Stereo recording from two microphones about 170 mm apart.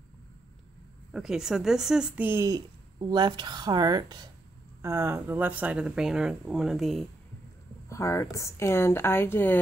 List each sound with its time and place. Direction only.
1.1 s speech: 5° right (ahead or behind)
7.9 s a woman's voice: 15° left (ahead or behind)